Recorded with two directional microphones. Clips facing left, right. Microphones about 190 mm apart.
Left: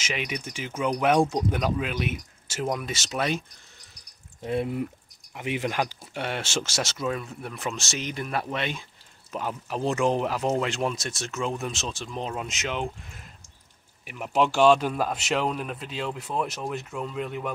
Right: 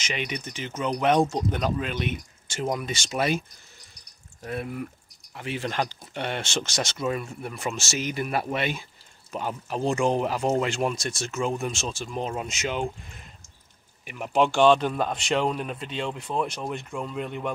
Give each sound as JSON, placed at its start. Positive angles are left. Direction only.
{"t": 0.0, "sound": "speech", "side_deg": 5}
{"t": 4.4, "sound": "speech", "side_deg": 25}